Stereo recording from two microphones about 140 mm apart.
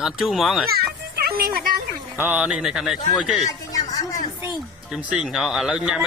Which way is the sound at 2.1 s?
10° right (ahead or behind).